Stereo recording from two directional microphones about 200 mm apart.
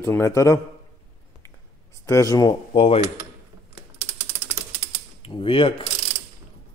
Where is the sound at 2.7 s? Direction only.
30° left (ahead or behind).